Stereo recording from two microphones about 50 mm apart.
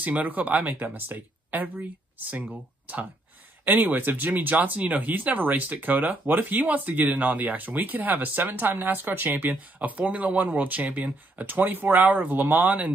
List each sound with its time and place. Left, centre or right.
0.0 s speech: right